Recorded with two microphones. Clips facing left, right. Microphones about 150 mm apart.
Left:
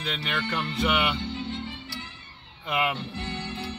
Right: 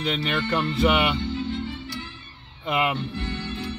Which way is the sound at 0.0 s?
25° right (ahead or behind).